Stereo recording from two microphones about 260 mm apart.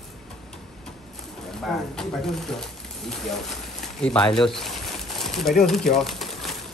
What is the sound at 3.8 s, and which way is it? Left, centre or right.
Pigeon, centre.